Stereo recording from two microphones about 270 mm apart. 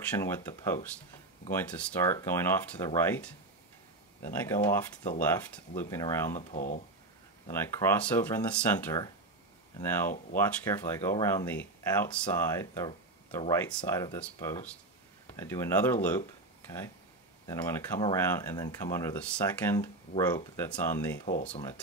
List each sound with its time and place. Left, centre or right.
0.1 s speech: centre
6.3 s speech: left
7.4 s speech: centre
17.5 s speech: centre